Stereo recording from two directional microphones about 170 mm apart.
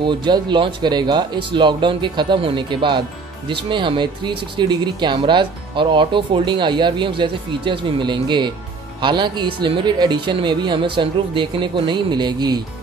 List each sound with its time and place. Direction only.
0.0 s speech: 25° right (ahead or behind)